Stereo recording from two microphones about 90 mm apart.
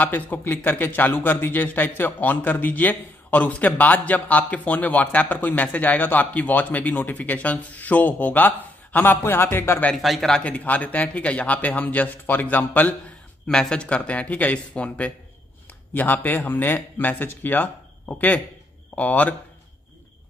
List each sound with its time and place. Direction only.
0.0 s a man's voice: 20° left (ahead or behind)
10.0 s a man's voice: 5° left (ahead or behind)